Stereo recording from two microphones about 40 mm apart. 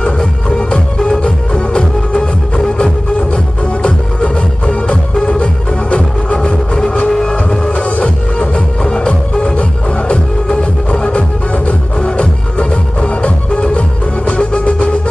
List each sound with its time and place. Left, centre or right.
0.0 s music: left